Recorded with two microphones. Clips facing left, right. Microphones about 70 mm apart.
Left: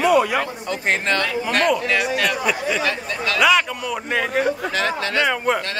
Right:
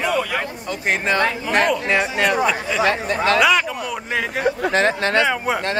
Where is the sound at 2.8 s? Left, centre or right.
Right.